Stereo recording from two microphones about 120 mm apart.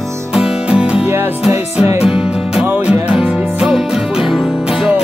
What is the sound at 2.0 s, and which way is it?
Music, 5° right (ahead or behind).